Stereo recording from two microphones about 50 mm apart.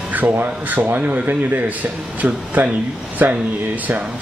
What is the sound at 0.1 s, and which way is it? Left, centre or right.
A man's voice, right.